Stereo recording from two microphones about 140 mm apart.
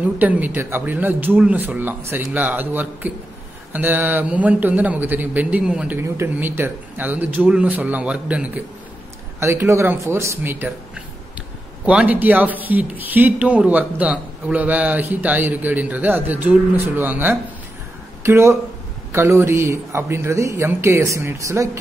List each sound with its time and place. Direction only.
0.0 s speech: 10° right (ahead or behind)
9.4 s speech: 20° right (ahead or behind)